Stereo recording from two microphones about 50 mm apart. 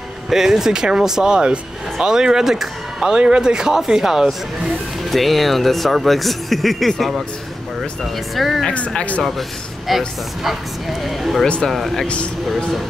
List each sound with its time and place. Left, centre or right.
0.3 s speech: centre
5.1 s speech: centre
8.7 s speech: left
9.8 s speech: centre